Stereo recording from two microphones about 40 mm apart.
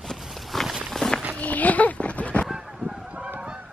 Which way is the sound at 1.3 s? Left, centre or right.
Left.